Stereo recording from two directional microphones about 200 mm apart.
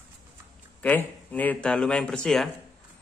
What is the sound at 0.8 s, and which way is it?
A man's voice, 10° left (ahead or behind).